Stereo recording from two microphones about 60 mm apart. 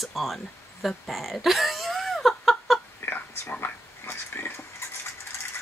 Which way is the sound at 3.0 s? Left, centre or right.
Left.